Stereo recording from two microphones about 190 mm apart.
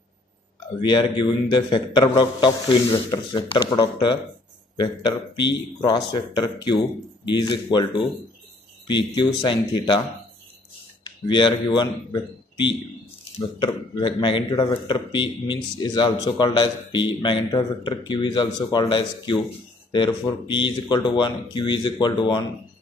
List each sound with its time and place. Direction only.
0.8 s speech: 25° left (ahead or behind)
11.1 s speech: 25° left (ahead or behind)